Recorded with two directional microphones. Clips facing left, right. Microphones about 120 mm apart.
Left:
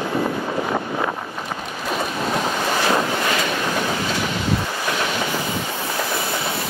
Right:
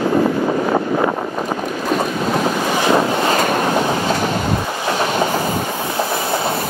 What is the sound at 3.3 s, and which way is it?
Train, 45° right (ahead or behind).